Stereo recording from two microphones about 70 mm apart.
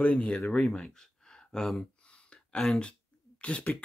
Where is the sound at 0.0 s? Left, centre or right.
Centre.